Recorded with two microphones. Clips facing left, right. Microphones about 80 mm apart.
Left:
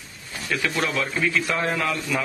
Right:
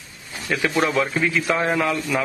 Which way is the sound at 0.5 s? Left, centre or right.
Centre.